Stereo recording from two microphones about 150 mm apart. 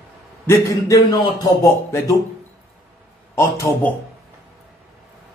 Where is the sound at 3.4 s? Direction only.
15° left (ahead or behind).